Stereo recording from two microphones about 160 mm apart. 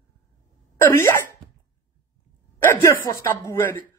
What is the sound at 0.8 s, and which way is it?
Speech, 15° left (ahead or behind).